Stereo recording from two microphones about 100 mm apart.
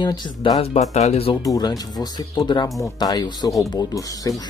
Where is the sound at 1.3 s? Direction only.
35° left (ahead or behind).